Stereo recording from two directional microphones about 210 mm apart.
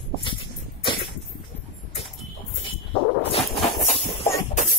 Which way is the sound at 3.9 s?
25° left (ahead or behind).